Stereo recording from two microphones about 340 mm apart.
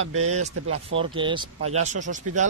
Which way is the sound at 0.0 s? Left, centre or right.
Right.